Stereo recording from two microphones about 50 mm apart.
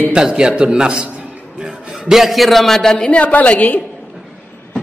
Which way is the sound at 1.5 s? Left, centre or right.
Centre.